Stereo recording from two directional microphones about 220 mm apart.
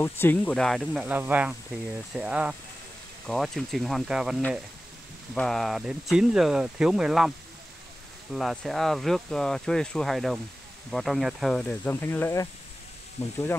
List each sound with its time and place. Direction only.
0.0 s speech: 10° left (ahead or behind)
13.2 s speech: 30° left (ahead or behind)